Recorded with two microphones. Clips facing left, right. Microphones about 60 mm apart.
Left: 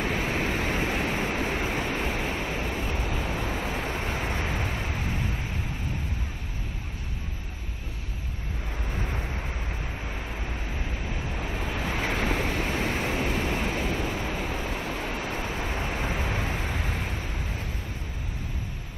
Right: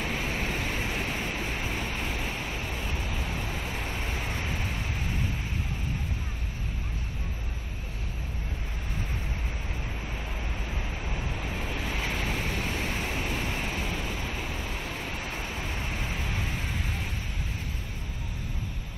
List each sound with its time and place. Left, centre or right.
0.0 s waves: left
8.9 s vehicle: left
11.1 s vehicle: left